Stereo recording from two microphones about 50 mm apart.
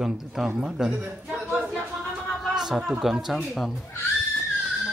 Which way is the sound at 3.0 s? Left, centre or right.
Centre.